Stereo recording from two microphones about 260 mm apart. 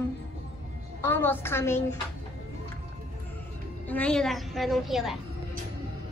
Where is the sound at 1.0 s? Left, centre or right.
Centre.